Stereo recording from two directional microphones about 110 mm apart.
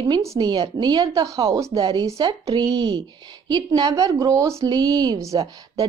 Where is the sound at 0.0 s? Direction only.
30° right (ahead or behind).